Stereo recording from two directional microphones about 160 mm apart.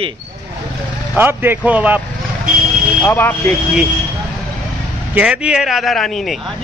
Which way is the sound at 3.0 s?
10° left (ahead or behind).